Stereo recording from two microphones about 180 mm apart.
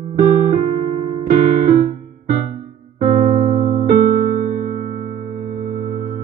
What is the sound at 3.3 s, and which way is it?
Electric piano, 45° right (ahead or behind).